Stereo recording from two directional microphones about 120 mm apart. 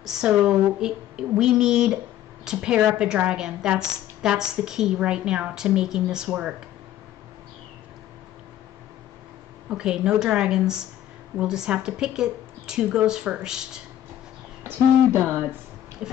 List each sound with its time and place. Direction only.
0.0 s a woman's voice: 5° right (ahead or behind)
9.7 s a woman's voice: 5° right (ahead or behind)
14.6 s owl: 20° right (ahead or behind)
16.0 s a woman's voice: 10° right (ahead or behind)